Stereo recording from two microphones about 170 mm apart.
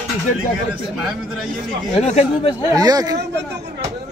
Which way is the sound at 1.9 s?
40° left (ahead or behind).